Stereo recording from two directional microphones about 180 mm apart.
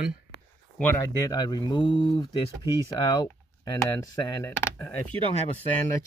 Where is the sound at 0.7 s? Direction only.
10° left (ahead or behind).